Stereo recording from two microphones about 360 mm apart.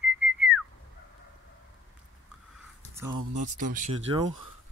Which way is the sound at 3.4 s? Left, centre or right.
Right.